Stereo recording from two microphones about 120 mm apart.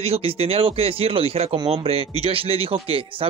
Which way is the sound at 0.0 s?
55° right (ahead or behind).